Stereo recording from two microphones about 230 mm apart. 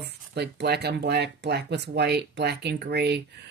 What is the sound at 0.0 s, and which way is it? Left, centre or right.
Speech, right.